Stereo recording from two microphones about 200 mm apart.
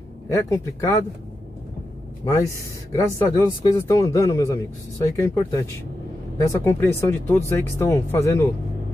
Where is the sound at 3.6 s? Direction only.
15° left (ahead or behind).